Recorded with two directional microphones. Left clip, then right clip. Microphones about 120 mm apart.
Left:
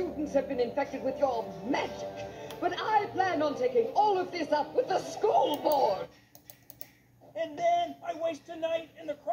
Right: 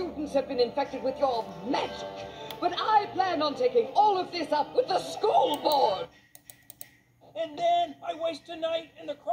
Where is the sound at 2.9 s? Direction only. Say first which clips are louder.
Right 3 dB; 40° right (ahead or behind).